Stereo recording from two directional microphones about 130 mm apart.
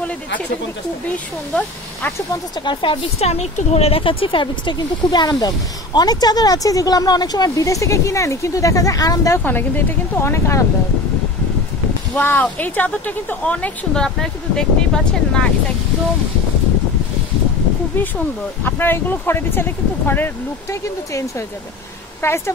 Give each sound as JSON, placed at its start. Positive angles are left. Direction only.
{"t": 2.6, "sound": "a woman's voice", "side_deg": 40}
{"t": 9.4, "sound": "speech", "side_deg": 15}
{"t": 12.2, "sound": "a woman's voice", "side_deg": 15}
{"t": 17.9, "sound": "a woman's voice", "side_deg": 15}
{"t": 22.2, "sound": "speech", "side_deg": 20}